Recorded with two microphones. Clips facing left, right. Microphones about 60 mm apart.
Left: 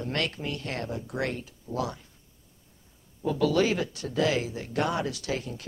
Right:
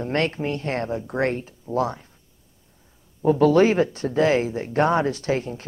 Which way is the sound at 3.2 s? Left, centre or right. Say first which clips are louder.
Right 8 dB; right.